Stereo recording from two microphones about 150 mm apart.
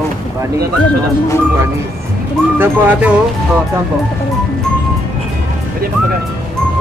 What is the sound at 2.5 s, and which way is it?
Speech, 10° right (ahead or behind).